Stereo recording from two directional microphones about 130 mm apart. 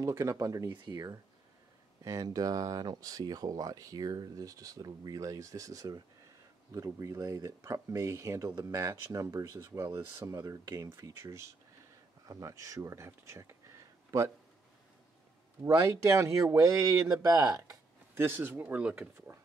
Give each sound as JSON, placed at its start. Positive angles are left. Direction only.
{"t": 0.0, "sound": "speech", "side_deg": -25}
{"t": 16.1, "sound": "speech", "side_deg": -20}